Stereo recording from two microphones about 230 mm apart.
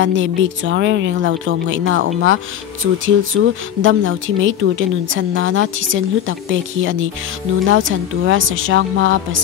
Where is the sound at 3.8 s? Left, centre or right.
Right.